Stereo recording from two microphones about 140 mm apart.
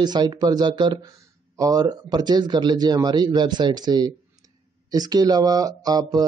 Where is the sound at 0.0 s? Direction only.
30° right (ahead or behind).